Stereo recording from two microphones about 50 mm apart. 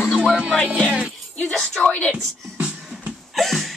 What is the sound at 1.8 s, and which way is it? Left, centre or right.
Speech, left.